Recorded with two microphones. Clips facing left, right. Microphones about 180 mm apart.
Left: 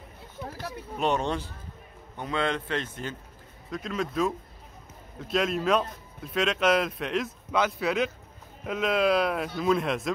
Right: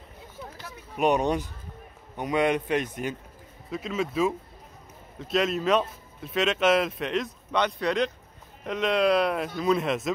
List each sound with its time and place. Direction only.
0.9 s speech: 15° right (ahead or behind)
3.7 s speech: 5° right (ahead or behind)